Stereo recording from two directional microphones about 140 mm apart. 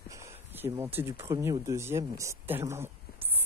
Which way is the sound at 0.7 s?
20° right (ahead or behind).